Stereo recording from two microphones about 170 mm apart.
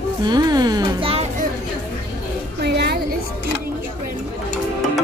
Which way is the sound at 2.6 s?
75° right (ahead or behind).